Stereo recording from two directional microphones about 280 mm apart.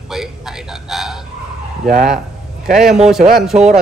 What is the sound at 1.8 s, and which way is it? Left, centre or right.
Speech, right.